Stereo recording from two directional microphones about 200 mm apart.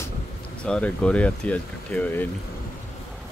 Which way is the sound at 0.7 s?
5° left (ahead or behind).